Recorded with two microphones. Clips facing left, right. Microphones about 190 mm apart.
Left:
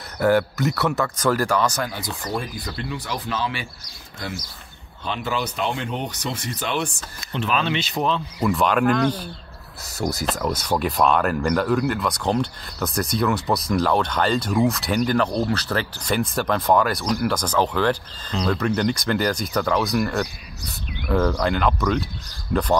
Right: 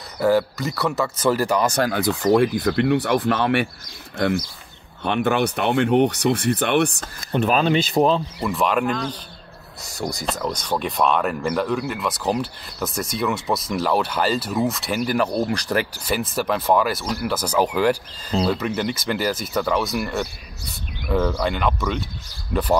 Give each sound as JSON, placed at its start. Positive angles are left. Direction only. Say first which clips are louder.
{"t": 0.2, "sound": "speech", "louder": "even", "side_deg": 0}
{"t": 1.8, "sound": "speech", "louder": "right 8 dB", "side_deg": -65}
{"t": 7.0, "sound": "speech", "louder": "right 6 dB", "side_deg": -40}
{"t": 8.4, "sound": "speech", "louder": "left 1 dB", "side_deg": 0}
{"t": 8.8, "sound": "speech", "louder": "left 5 dB", "side_deg": 60}
{"t": 9.9, "sound": "speech", "louder": "left 2 dB", "side_deg": 0}